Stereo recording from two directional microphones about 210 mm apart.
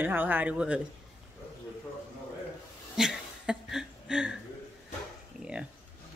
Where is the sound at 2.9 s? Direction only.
5° right (ahead or behind).